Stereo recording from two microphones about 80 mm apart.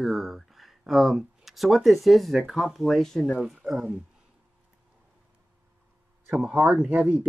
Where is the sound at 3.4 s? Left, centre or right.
Centre.